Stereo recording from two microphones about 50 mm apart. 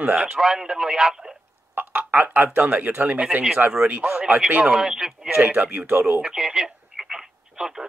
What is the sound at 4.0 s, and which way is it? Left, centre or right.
Speech, centre.